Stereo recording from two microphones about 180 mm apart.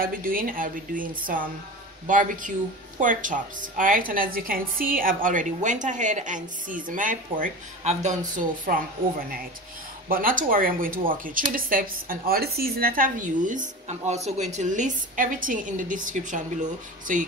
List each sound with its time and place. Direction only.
0.0 s a woman's voice: 50° right (ahead or behind)
10.0 s a woman's voice: 50° right (ahead or behind)